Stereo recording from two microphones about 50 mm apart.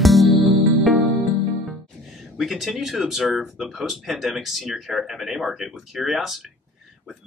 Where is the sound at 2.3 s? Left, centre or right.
Centre.